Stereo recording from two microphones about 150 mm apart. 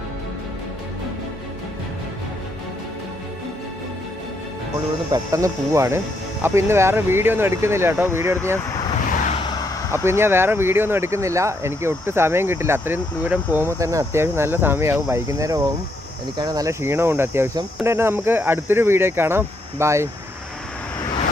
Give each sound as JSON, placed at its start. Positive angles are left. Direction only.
{"t": 5.1, "sound": "speech", "side_deg": -20}
{"t": 9.3, "sound": "vehicle", "side_deg": 30}
{"t": 10.0, "sound": "speech", "side_deg": -15}